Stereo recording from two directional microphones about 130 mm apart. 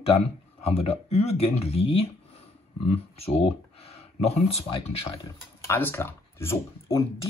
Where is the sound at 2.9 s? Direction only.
50° left (ahead or behind).